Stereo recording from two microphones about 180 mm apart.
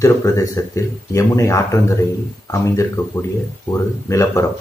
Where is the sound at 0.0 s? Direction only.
15° left (ahead or behind).